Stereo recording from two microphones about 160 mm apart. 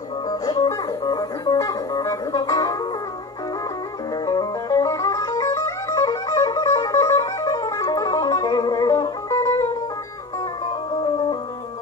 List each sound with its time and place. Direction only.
0.3 s music: 25° left (ahead or behind)
4.1 s music: 25° left (ahead or behind)